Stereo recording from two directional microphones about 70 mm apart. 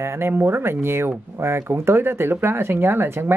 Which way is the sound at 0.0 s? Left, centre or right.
Right.